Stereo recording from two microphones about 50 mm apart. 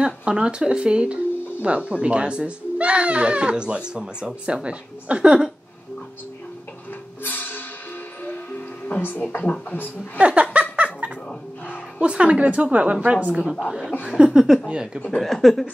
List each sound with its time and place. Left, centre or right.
0.0 s speech: right
7.2 s music: left
8.8 s speech: left
9.4 s speech: left
10.1 s laughter: right
12.0 s speech: right
13.4 s a woman's voice: centre
14.0 s a sound: centre
15.0 s a woman's voice: centre